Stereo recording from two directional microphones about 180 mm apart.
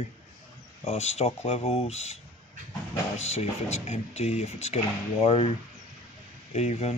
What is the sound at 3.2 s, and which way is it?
Speech, 35° left (ahead or behind).